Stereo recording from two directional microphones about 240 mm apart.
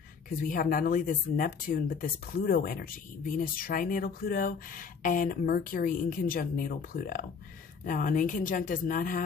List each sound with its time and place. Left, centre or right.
0.4 s speech: left